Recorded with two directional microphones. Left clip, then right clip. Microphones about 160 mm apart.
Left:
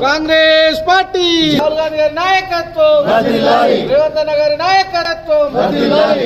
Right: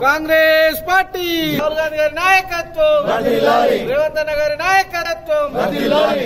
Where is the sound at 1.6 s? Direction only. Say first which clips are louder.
Left 4 dB; 5° left (ahead or behind).